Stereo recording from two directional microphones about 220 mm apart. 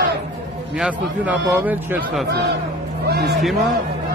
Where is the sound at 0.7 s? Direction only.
5° right (ahead or behind).